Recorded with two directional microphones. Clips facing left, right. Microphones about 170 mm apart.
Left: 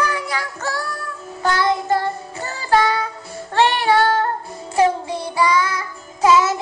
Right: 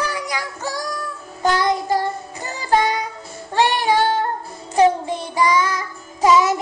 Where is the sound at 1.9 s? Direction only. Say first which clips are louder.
Left 1 dB; 15° right (ahead or behind).